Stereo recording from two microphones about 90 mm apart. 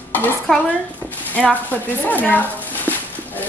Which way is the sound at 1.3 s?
20° left (ahead or behind).